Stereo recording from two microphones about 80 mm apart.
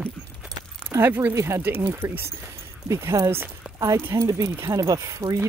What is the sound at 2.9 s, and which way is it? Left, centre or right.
Speech, right.